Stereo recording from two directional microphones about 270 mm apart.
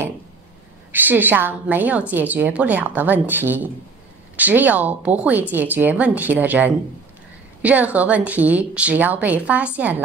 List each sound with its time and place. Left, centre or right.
0.9 s a woman's voice: centre